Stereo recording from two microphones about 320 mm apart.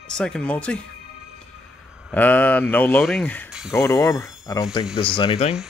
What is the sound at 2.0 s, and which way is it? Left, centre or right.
Speech, centre.